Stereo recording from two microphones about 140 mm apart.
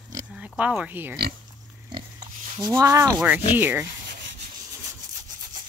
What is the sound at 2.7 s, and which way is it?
Sanding, 20° right (ahead or behind).